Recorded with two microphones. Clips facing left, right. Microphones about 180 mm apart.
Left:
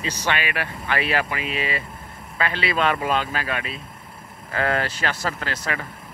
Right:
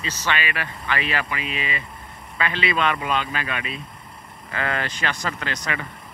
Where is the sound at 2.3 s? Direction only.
5° left (ahead or behind).